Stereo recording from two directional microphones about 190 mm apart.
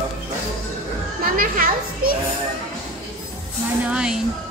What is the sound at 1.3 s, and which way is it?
Speech, 50° right (ahead or behind).